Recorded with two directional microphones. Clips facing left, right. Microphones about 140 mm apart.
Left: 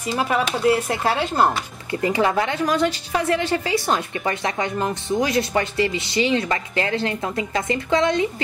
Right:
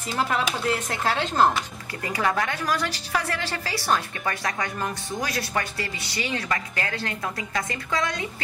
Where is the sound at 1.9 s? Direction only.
25° left (ahead or behind).